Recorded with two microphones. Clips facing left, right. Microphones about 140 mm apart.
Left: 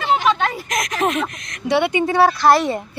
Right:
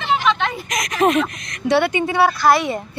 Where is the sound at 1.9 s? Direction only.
35° left (ahead or behind).